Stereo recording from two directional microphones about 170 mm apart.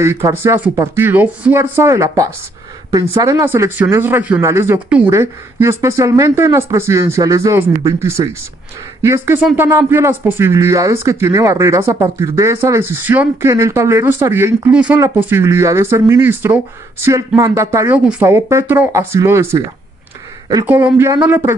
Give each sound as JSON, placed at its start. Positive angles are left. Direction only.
{"t": 0.0, "sound": "speech", "side_deg": -15}
{"t": 20.6, "sound": "speech", "side_deg": -10}